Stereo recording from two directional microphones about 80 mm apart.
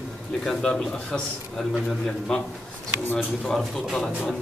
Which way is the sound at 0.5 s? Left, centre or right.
Centre.